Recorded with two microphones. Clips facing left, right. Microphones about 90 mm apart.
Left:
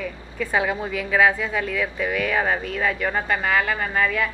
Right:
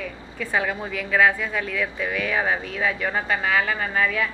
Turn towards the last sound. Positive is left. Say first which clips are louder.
# left 1 dB
turn(degrees=0)  # may be behind; listen again after turning